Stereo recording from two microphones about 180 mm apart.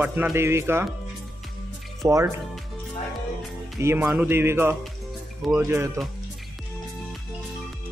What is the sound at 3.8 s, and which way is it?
Speech, 10° right (ahead or behind).